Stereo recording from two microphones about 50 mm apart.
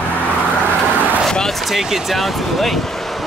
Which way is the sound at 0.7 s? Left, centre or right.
Right.